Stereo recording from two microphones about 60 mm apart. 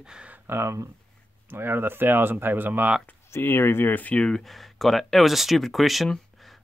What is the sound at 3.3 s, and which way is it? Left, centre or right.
Speech, left.